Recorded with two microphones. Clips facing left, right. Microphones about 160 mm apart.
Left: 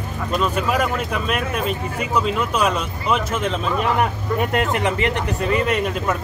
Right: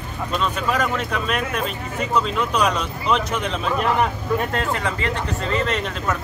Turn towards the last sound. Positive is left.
turn(degrees=10)  # may be behind; listen again after turning